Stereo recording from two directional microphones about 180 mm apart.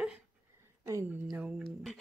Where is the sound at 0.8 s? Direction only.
20° right (ahead or behind).